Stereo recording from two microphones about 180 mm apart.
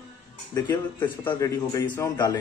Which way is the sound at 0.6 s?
20° left (ahead or behind).